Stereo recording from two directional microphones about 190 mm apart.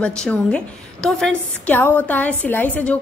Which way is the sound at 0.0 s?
5° left (ahead or behind).